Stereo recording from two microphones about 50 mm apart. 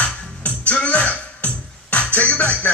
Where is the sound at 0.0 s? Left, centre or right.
Left.